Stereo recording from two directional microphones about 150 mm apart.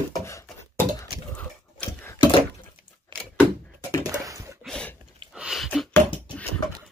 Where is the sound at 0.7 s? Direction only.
15° left (ahead or behind).